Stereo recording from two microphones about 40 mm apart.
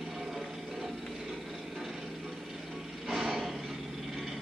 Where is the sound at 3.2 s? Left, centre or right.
Centre.